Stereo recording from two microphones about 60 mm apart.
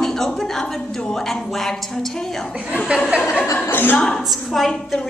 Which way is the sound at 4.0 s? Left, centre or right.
Centre.